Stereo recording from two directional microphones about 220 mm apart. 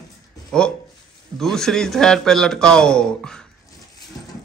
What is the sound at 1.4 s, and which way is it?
Speech, centre (ahead or behind).